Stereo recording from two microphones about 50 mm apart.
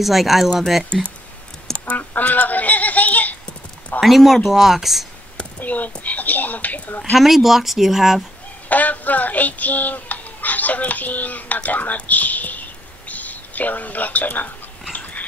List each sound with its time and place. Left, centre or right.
0.0 s speech: centre
1.9 s a sound: left
4.0 s speech: centre
5.6 s speech: left
7.2 s speech: centre
8.6 s a sound: left